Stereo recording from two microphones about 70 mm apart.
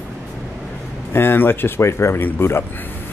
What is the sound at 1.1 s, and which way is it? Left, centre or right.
Speech, left.